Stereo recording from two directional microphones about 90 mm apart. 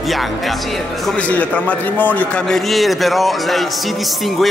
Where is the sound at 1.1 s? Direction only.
15° left (ahead or behind).